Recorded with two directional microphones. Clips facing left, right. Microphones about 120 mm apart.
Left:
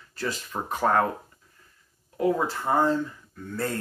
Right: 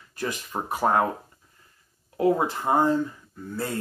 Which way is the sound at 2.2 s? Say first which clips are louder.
Right 2 dB; 25° right (ahead or behind).